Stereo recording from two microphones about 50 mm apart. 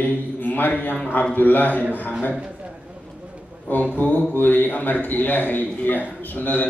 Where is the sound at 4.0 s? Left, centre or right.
Left.